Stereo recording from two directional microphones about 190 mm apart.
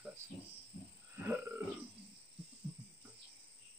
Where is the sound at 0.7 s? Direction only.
35° left (ahead or behind).